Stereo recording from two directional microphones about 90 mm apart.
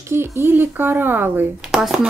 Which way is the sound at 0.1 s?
25° right (ahead or behind).